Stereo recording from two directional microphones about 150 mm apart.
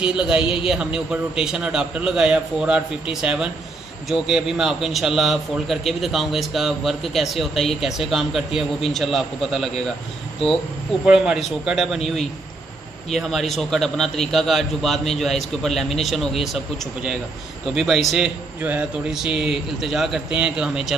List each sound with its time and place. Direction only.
0.1 s a man's voice: 5° right (ahead or behind)
0.4 s a man's voice: 35° left (ahead or behind)
0.7 s a man's voice: 5° right (ahead or behind)
11.1 s a man's voice: 5° right (ahead or behind)
13.1 s a man's voice: centre (ahead or behind)
17.7 s a man's voice: centre (ahead or behind)